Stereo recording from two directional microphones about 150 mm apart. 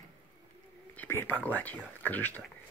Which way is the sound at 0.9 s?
15° left (ahead or behind).